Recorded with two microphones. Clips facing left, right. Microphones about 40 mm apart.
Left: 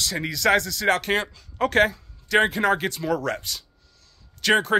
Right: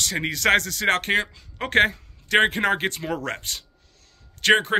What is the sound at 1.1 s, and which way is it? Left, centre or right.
Speech, right.